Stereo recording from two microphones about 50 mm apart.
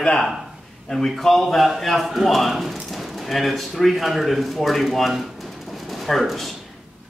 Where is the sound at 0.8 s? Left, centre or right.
Centre.